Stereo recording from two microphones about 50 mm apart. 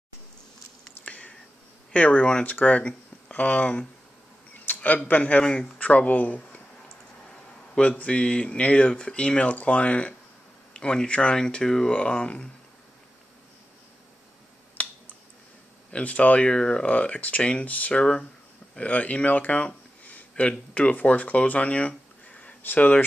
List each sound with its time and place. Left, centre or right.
1.0 s a sound: left
1.9 s speech: left
5.4 s speech: centre
5.8 s speech: left
7.7 s speech: centre
11.9 s speech: left
14.8 s finger snapping: left
15.9 s speech: left